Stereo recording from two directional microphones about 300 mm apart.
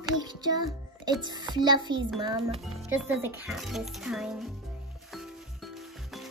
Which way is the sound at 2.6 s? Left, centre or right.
Centre.